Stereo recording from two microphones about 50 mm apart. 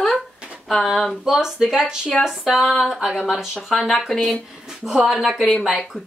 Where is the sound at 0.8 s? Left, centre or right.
Centre.